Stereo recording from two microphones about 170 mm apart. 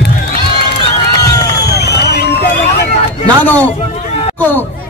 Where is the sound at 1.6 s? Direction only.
70° left (ahead or behind).